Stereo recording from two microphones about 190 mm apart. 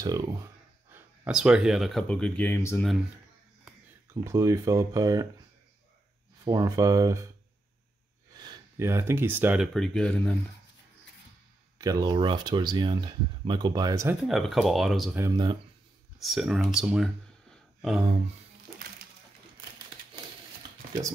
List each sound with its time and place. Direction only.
0.0 s speech: 20° right (ahead or behind)
0.9 s speech: 5° right (ahead or behind); by 2.8 s 10° left (ahead or behind)
3.6 s speech: 15° right (ahead or behind)
6.4 s speech: 20° right (ahead or behind)
8.4 s speech: 20° right (ahead or behind)
9.8 s speech: 5° left (ahead or behind)
11.8 s speech: 20° right (ahead or behind)
14.2 s speech: centre (ahead or behind)
15.1 s speech: 20° right (ahead or behind)
16.2 s speech: centre (ahead or behind)